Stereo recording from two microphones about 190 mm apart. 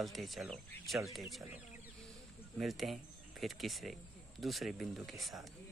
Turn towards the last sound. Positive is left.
turn(degrees=0)  # may be behind; listen again after turning